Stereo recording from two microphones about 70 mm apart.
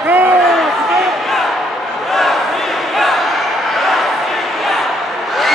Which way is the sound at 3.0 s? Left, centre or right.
Centre.